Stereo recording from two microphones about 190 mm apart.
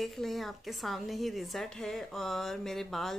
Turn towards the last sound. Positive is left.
turn(degrees=0)  # may be behind; listen again after turning